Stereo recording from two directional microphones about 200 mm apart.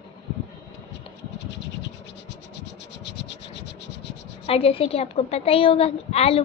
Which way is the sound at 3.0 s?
60° left (ahead or behind).